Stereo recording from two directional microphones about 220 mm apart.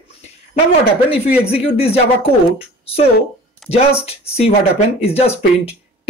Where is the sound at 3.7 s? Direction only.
25° left (ahead or behind).